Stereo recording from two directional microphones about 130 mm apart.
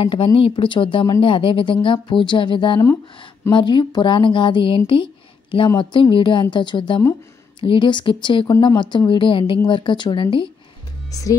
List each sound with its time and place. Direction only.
0.0 s speech: 45° left (ahead or behind)
11.1 s speech: 25° left (ahead or behind)